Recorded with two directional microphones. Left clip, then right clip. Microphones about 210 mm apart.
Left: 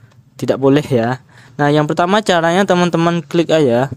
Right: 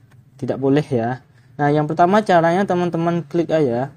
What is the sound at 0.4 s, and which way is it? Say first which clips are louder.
Speech: left 5 dB; 30° left (ahead or behind).